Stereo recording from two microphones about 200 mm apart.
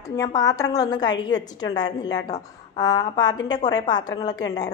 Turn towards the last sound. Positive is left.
turn(degrees=20)  # may be behind; listen again after turning